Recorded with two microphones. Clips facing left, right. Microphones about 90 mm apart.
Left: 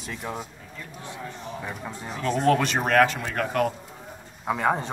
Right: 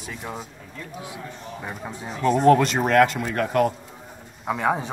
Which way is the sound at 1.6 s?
10° right (ahead or behind).